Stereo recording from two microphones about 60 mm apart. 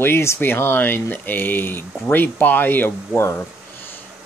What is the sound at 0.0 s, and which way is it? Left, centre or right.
Speech, left.